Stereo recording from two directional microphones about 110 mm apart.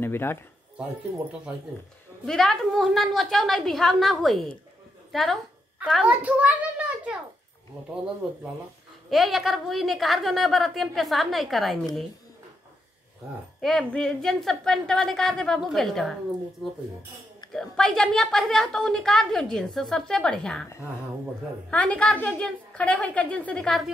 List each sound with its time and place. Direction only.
0.0 s speech: 20° left (ahead or behind)
2.2 s a woman's voice: 5° left (ahead or behind)
6.0 s a child's voice: 10° right (ahead or behind)
9.1 s a woman's voice: centre (ahead or behind)
13.6 s a woman's voice: 5° left (ahead or behind)
21.6 s a woman's voice: 10° left (ahead or behind)